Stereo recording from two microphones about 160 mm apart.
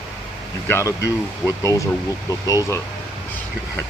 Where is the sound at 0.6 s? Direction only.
15° left (ahead or behind).